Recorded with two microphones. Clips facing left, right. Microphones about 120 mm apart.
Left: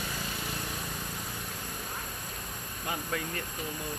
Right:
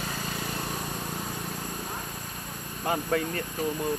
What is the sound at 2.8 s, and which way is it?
Speech, 45° right (ahead or behind).